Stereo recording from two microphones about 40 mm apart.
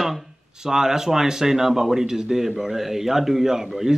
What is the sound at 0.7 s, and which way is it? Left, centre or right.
Speech, centre.